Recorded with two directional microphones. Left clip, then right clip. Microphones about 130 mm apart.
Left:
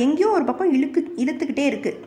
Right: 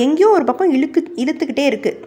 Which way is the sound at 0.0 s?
30° right (ahead or behind).